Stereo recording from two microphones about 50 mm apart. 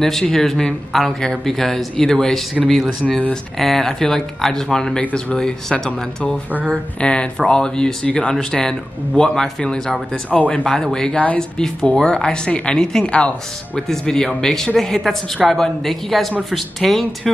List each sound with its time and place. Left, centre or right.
0.0 s a woman's voice: centre
13.7 s a woman's voice: centre